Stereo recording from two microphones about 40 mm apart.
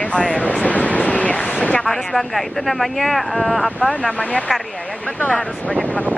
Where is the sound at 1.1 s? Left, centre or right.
Left.